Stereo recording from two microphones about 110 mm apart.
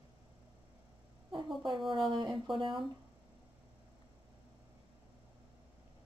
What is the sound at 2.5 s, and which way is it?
Speech, 50° right (ahead or behind).